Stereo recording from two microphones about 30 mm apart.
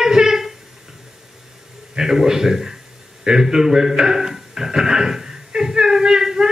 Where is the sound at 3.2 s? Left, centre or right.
Centre.